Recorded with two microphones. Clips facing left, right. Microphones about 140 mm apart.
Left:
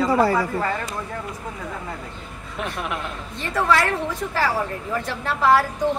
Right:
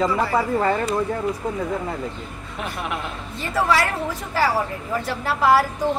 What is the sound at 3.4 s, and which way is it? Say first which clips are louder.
A woman's voice: even; 5° right (ahead or behind).